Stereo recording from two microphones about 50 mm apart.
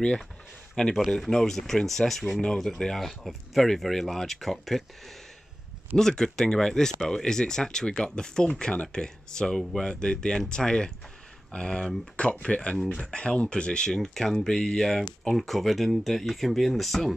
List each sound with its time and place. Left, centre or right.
0.8 s speech: centre
9.6 s speech: centre
9.8 s speech: centre